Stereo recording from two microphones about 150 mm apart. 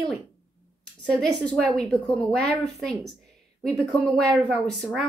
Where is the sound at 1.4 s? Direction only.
5° left (ahead or behind).